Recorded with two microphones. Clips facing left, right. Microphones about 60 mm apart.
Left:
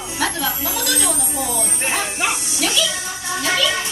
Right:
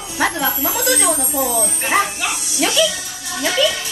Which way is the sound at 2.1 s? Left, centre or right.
Left.